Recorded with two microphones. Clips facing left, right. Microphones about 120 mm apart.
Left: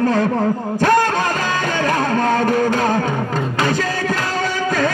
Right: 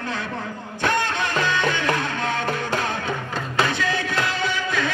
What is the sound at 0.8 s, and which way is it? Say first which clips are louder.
Speech: left 7 dB; 40° left (ahead or behind).